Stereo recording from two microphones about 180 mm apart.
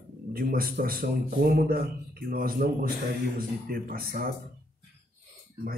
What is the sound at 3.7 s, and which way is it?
Speech, 55° right (ahead or behind).